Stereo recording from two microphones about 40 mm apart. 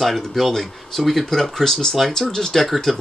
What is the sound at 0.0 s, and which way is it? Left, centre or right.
Speech, centre.